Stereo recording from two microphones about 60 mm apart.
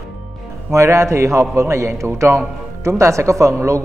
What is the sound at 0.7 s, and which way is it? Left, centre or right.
A man's voice, right.